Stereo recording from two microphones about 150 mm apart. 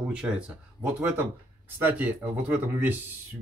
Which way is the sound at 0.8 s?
15° right (ahead or behind).